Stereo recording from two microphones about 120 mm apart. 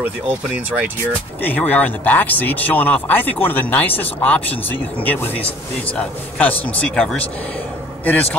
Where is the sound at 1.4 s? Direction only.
15° left (ahead or behind).